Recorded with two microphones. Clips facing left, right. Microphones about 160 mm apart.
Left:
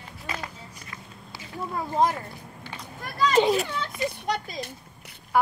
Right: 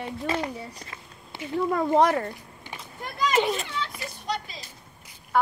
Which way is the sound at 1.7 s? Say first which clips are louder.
Right 3 dB; 70° right (ahead or behind).